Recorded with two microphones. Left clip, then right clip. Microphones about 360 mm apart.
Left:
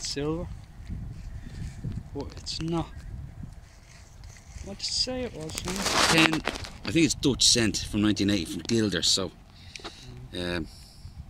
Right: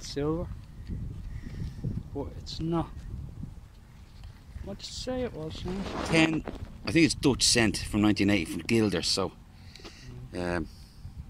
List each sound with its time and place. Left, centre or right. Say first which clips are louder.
0.0 s speech: even; centre
2.1 s speech: left 3 dB; centre
4.6 s speech: left 6 dB; centre
5.9 s speech: left 5 dB; left
6.8 s a sound: right 1 dB; centre
7.2 s speech: left 2 dB; centre
10.0 s a sound: right 1 dB; centre